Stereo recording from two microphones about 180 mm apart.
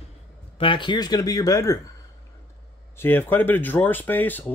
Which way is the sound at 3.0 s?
10° left (ahead or behind).